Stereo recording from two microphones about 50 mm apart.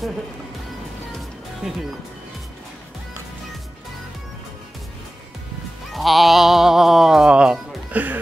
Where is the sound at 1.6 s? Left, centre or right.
Centre.